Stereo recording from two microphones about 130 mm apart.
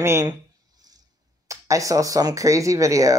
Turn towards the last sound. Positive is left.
turn(degrees=-25)  # may be behind; listen again after turning